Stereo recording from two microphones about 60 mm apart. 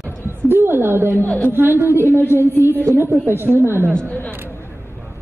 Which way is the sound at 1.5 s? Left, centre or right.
Right.